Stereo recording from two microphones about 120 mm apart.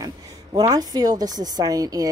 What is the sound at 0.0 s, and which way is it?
A woman's voice, 35° right (ahead or behind).